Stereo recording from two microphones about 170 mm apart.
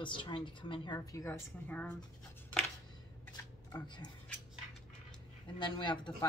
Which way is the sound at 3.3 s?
25° left (ahead or behind).